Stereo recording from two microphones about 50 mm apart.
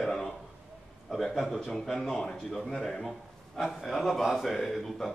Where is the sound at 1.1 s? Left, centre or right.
Centre.